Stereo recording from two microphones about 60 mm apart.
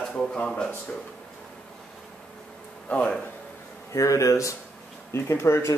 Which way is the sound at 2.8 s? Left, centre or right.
Left.